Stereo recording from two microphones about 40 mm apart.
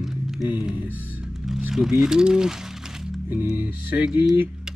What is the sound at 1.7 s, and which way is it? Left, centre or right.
Speech, centre.